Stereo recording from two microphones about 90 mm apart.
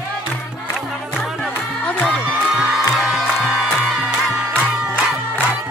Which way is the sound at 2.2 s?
5° right (ahead or behind).